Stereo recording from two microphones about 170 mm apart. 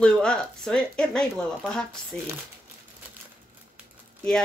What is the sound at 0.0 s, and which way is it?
Speech, 5° left (ahead or behind).